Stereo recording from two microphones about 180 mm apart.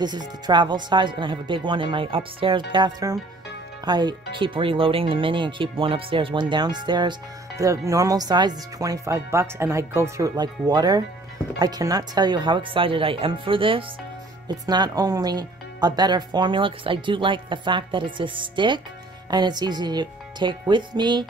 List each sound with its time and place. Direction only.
0.0 s speech: 25° right (ahead or behind)